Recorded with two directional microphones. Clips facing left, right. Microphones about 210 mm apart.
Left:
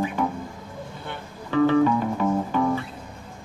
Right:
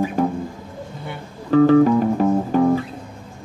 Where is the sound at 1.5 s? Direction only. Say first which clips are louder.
Right 6 dB; 40° right (ahead or behind).